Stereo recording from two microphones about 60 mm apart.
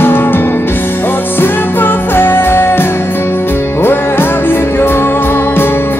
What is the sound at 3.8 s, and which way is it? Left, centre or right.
Music, left.